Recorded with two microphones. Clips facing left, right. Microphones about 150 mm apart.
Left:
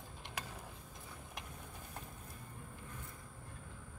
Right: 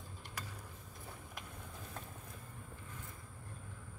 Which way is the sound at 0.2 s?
20° left (ahead or behind).